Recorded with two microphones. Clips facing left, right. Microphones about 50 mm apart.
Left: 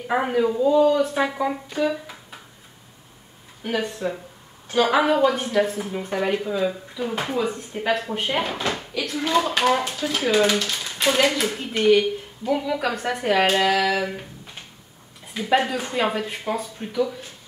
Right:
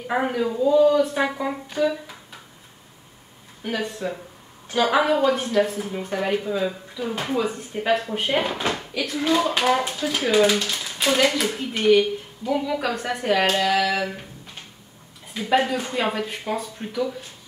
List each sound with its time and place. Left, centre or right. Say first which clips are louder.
0.1 s a woman's voice: left 2 dB; centre
3.6 s a woman's voice: left 2 dB; centre
15.3 s a woman's voice: even; centre